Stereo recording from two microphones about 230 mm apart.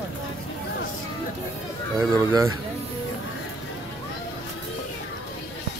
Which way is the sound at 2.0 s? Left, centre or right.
Centre.